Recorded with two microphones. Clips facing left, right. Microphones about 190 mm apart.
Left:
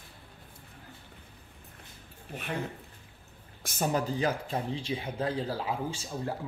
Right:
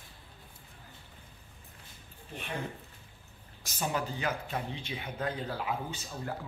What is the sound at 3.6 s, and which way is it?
Speech, 50° left (ahead or behind).